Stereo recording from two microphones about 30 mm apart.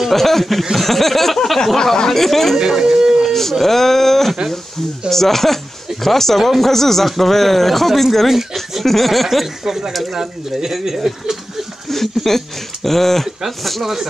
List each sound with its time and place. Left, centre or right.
0.1 s speech: centre
2.6 s speech: centre
3.3 s a sound: centre
3.6 s speech: centre
6.7 s speech: centre
9.7 s speech: centre
11.9 s speech: centre